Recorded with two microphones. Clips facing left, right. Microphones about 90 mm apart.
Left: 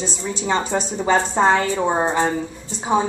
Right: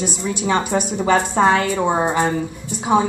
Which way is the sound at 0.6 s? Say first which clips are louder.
Right 2 dB; 15° right (ahead or behind).